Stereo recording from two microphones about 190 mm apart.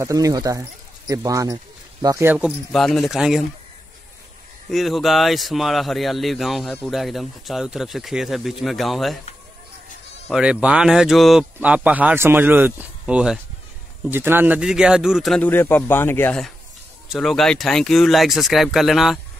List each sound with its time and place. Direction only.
0.0 s speech: 15° right (ahead or behind)
4.6 s speech: centre (ahead or behind)
10.3 s speech: 5° right (ahead or behind)